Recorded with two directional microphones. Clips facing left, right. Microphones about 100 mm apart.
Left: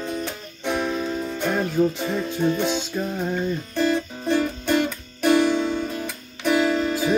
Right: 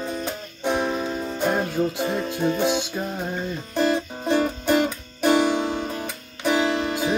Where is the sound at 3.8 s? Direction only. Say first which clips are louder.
Right 1 dB; 30° right (ahead or behind).